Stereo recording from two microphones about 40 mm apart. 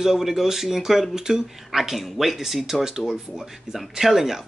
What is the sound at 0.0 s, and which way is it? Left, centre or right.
Speech, centre.